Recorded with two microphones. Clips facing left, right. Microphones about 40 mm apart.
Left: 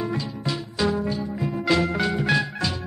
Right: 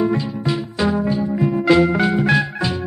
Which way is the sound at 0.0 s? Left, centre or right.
Centre.